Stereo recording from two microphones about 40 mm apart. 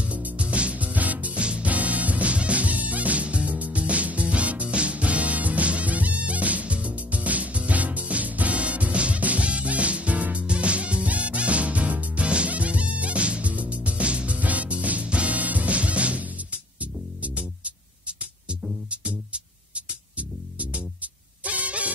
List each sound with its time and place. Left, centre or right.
0.1 s music: right
18.9 s music: right